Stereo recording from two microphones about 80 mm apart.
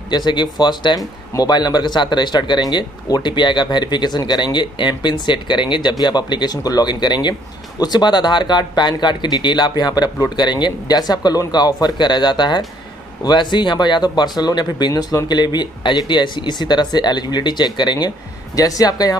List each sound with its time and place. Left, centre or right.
0.1 s speech: left
18.6 s speech: left